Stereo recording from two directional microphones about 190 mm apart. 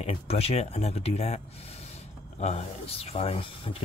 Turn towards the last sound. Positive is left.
turn(degrees=30)  # may be behind; listen again after turning